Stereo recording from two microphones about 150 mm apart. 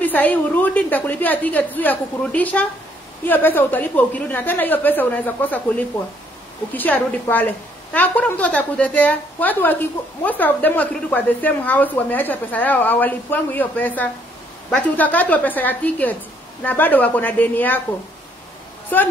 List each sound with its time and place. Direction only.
0.0 s a woman's voice: 10° left (ahead or behind)